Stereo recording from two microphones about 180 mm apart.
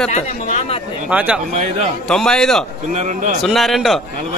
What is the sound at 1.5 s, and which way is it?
Speech, 40° right (ahead or behind).